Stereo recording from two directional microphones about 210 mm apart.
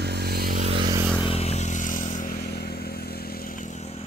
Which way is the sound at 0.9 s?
10° right (ahead or behind).